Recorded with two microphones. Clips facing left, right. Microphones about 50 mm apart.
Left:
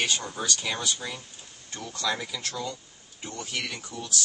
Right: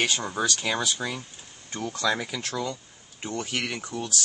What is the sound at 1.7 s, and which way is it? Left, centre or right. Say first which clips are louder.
Speech: right 4 dB; right.